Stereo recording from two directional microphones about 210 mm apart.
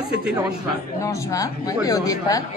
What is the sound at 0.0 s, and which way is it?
Speech, 5° right (ahead or behind).